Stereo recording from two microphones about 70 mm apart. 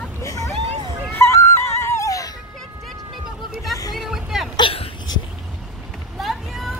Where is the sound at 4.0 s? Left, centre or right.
Centre.